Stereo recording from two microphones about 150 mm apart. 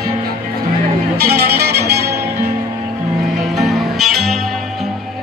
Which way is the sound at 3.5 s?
Centre (ahead or behind).